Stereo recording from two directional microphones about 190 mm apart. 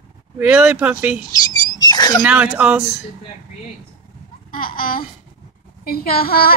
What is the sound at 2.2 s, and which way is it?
Speech, 5° right (ahead or behind).